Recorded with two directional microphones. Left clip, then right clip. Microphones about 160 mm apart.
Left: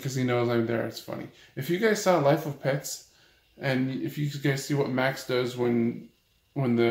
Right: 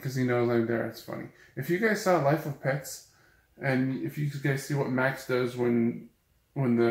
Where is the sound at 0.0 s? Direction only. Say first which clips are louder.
Left 1 dB; centre (ahead or behind).